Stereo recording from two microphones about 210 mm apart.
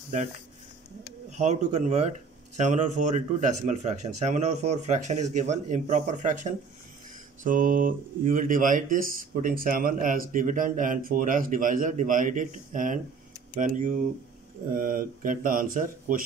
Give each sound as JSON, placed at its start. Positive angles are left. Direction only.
{"t": 1.4, "sound": "speech", "side_deg": -35}